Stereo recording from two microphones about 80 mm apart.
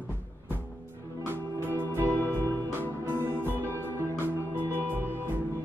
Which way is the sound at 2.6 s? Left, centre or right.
Right.